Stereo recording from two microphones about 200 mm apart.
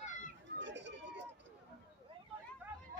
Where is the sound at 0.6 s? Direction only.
65° right (ahead or behind).